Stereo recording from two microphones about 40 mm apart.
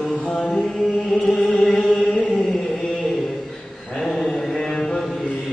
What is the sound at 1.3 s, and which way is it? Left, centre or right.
Chant, left.